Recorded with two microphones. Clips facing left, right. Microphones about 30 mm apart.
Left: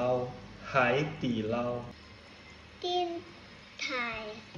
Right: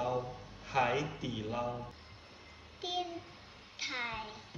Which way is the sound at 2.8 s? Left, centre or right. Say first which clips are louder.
Left 6 dB; centre.